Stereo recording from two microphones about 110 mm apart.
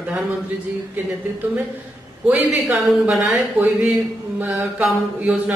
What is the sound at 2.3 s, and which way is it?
Speech, 10° right (ahead or behind).